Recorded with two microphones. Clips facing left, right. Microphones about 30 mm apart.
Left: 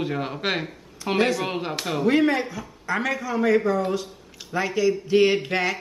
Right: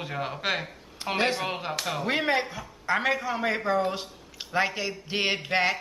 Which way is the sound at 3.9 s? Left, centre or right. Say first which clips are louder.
Left 6 dB; right.